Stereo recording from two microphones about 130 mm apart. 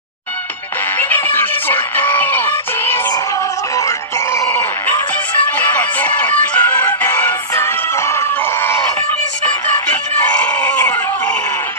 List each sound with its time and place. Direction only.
0.9 s music: 15° left (ahead or behind)
4.5 s music: 15° left (ahead or behind)
10.4 s a sound: 10° left (ahead or behind)